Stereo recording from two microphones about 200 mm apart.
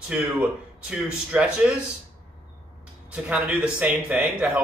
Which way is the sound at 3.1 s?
5° right (ahead or behind).